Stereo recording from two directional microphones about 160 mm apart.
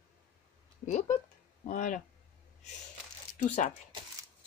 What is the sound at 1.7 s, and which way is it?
Speech, 55° left (ahead or behind).